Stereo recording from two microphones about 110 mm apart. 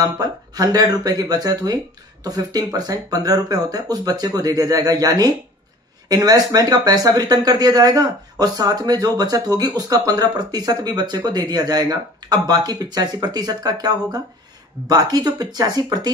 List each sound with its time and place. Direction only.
0.0 s speech: 35° right (ahead or behind)